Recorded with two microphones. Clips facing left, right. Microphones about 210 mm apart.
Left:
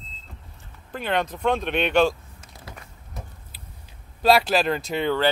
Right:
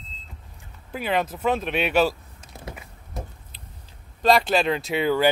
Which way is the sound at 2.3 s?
25° right (ahead or behind).